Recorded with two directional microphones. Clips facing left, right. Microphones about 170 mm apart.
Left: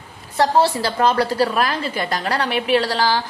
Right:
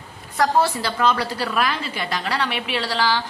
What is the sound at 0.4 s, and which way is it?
A woman's voice, 35° left (ahead or behind).